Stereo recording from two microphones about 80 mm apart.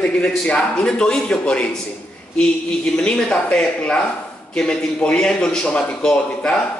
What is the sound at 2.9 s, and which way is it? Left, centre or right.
A man's voice, centre.